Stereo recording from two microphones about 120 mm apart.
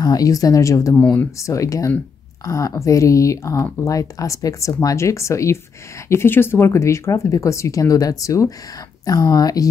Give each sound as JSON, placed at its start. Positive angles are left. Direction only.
{"t": 0.0, "sound": "speech", "side_deg": 30}